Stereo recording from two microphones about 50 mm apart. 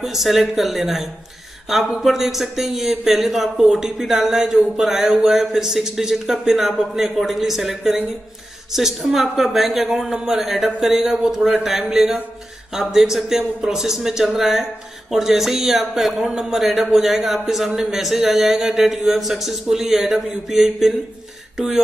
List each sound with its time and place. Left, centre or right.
0.0 s speech: centre